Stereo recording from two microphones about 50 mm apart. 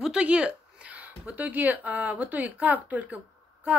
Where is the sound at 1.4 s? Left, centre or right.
Right.